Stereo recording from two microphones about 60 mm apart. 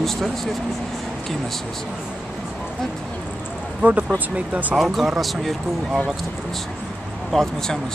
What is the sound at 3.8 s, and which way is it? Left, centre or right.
Speech, right.